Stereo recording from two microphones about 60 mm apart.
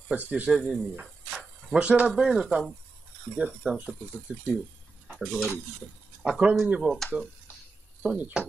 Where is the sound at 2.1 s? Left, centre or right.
Centre.